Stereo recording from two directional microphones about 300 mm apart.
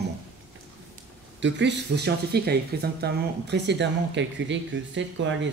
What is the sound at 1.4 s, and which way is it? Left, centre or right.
Speech, right.